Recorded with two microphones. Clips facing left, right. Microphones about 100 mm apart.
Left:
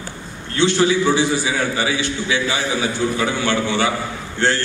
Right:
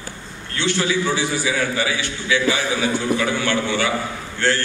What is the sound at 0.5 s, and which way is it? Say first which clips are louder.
A man's voice: left 5 dB; 20° left (ahead or behind).